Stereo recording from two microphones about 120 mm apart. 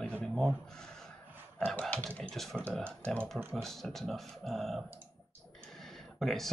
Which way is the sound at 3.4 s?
20° right (ahead or behind).